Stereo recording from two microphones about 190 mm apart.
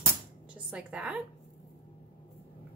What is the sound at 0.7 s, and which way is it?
Speech, 5° right (ahead or behind).